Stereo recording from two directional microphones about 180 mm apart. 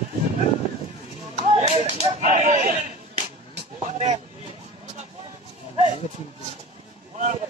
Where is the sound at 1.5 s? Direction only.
35° right (ahead or behind).